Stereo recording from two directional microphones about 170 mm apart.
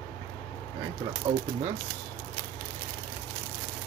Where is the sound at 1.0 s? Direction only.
25° right (ahead or behind).